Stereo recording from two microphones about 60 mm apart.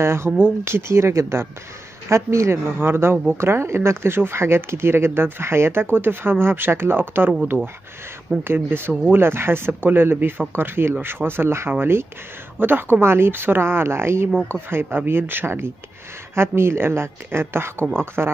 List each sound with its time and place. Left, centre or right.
0.0 s speech: right